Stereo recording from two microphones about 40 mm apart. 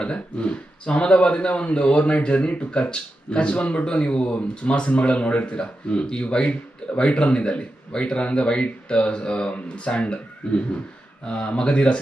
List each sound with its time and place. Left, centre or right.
0.0 s speech: left